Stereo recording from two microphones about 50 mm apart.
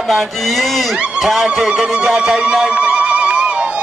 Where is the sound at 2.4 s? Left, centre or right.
Centre.